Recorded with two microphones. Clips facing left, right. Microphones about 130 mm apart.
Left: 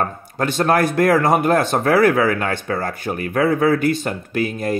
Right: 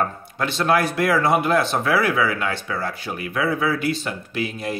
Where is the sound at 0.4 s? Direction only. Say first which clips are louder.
Left 3 dB; 45° left (ahead or behind).